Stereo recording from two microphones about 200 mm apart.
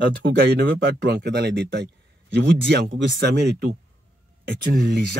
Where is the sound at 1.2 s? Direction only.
55° right (ahead or behind).